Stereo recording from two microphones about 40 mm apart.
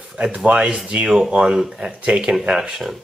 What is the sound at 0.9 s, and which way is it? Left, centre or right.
Speech, right.